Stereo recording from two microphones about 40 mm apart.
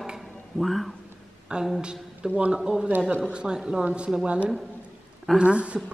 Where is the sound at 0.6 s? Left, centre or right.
Centre.